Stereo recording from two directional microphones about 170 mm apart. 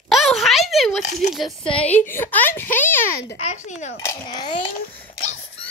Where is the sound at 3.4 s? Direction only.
45° left (ahead or behind).